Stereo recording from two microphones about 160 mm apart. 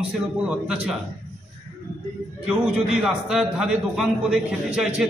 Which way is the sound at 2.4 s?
5° right (ahead or behind).